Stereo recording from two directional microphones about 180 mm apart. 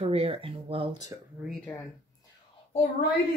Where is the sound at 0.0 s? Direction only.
35° right (ahead or behind).